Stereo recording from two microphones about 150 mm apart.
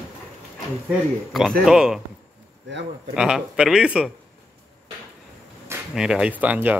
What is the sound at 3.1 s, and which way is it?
Speech, 5° right (ahead or behind).